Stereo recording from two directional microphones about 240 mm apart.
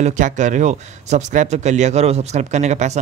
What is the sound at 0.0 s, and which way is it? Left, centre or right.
Speech, right.